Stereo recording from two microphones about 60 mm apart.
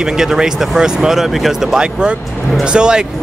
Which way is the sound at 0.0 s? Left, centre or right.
Centre.